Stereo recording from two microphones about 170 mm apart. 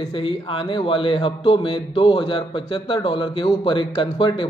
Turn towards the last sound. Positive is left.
turn(degrees=30)  # may be behind; listen again after turning